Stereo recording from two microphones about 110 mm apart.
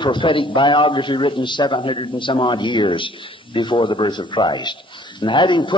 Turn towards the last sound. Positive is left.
turn(degrees=45)  # may be behind; listen again after turning